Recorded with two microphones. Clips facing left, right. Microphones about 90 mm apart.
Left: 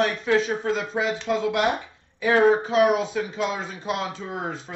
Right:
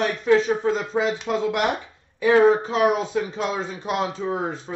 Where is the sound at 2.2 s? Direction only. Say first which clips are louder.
Right 2 dB; 35° right (ahead or behind).